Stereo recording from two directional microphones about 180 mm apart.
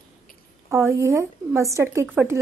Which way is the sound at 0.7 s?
15° right (ahead or behind).